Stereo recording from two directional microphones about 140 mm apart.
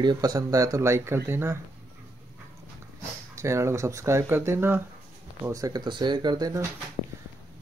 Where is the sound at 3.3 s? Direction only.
20° right (ahead or behind).